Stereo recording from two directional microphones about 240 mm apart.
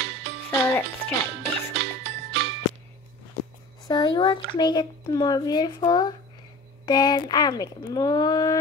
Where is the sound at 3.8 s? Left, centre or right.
Centre.